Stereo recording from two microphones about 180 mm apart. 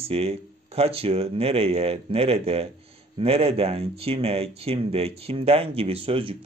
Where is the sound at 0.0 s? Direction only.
35° right (ahead or behind).